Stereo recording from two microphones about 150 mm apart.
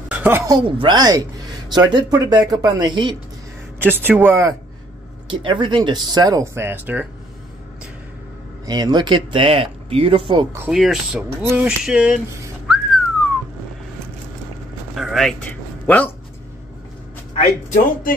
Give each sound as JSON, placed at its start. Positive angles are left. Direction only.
{"t": 0.1, "sound": "a sound", "side_deg": -10}
{"t": 0.5, "sound": "speech", "side_deg": -35}
{"t": 3.8, "sound": "speech", "side_deg": -15}
{"t": 5.3, "sound": "speech", "side_deg": -35}
{"t": 8.6, "sound": "speech", "side_deg": -25}
{"t": 10.7, "sound": "speech", "side_deg": 0}
{"t": 12.6, "sound": "whistling", "side_deg": 0}
{"t": 15.0, "sound": "a sound", "side_deg": 0}